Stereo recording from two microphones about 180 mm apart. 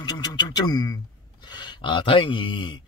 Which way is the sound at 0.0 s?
25° left (ahead or behind).